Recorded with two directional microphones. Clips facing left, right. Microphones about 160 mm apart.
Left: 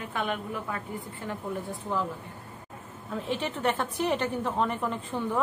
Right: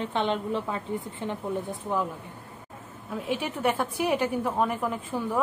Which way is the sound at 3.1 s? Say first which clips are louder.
Right 1 dB; 10° right (ahead or behind).